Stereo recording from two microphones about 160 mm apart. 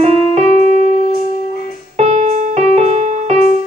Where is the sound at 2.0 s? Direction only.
45° right (ahead or behind).